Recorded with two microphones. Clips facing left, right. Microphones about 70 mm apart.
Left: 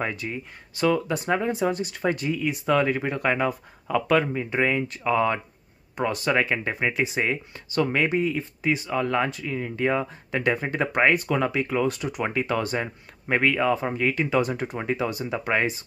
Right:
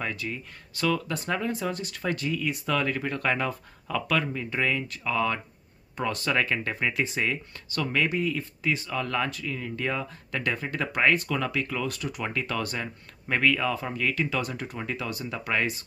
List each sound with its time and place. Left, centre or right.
0.0 s speech: left